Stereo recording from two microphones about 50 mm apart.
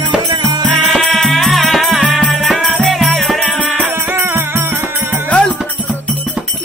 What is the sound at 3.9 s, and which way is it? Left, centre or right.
Music, right.